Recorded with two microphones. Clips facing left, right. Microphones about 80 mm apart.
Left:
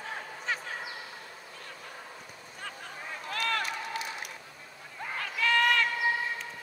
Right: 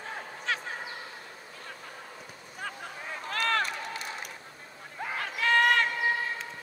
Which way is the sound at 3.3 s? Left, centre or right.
Right.